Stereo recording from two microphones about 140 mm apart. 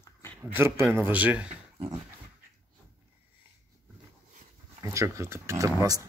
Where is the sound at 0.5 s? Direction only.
15° right (ahead or behind).